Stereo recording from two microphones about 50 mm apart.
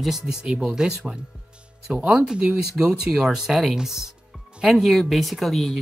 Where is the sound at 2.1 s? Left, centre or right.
Centre.